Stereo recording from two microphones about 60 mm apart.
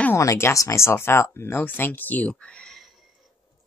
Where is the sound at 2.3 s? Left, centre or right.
Centre.